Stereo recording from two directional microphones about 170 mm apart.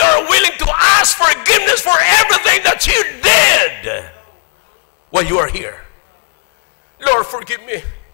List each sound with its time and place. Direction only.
0.0 s music: 15° left (ahead or behind)
5.1 s a sound: 15° left (ahead or behind)
5.4 s a man's voice: 20° left (ahead or behind)
7.2 s a man's voice: 15° left (ahead or behind)